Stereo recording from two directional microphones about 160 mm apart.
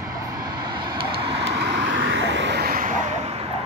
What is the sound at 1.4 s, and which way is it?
Vehicle, 90° right.